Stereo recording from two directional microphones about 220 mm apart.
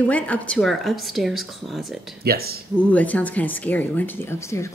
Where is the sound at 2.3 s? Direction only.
45° right (ahead or behind).